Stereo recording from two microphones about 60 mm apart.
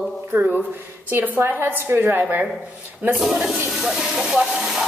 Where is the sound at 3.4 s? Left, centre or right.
Centre.